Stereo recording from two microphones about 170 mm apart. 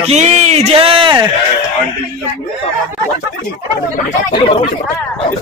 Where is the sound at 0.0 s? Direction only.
40° right (ahead or behind).